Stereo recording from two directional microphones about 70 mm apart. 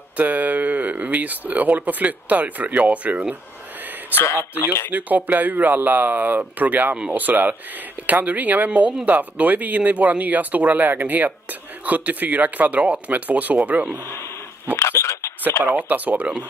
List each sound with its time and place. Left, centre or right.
0.2 s speech: right
4.1 s speech: left
4.9 s speech: right
14.8 s a sound: left
15.6 s speech: right